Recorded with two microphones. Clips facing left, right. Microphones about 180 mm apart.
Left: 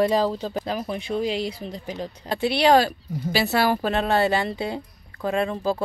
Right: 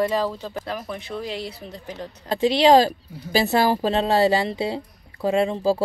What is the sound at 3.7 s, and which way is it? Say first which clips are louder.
Speech: right 2 dB; 30° right (ahead or behind).